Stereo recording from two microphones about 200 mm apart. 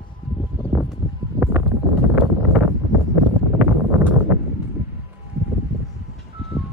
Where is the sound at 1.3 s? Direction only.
10° right (ahead or behind).